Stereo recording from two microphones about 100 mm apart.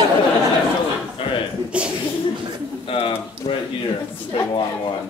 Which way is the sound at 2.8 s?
65° left (ahead or behind).